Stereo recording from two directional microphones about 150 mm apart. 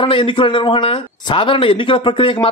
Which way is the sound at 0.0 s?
35° left (ahead or behind).